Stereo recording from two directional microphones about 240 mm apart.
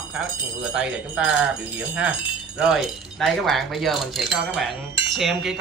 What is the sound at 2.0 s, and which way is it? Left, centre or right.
Speech, centre.